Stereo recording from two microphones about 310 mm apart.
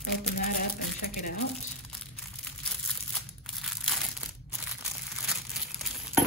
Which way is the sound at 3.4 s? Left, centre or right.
Centre.